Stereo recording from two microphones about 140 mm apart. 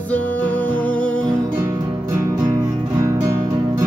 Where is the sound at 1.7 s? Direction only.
25° right (ahead or behind).